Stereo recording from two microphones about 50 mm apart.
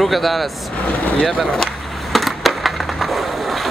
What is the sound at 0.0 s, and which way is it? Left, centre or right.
Speech, centre.